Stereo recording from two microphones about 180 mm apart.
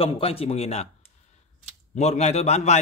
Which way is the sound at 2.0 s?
35° left (ahead or behind).